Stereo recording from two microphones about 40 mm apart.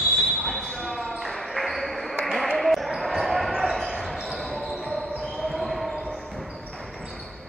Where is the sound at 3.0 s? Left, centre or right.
Centre.